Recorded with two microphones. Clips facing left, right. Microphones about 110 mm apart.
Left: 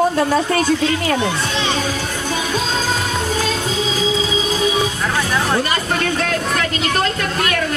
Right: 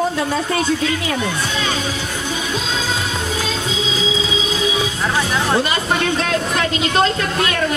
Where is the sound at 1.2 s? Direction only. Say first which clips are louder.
Left 2 dB; 25° left (ahead or behind).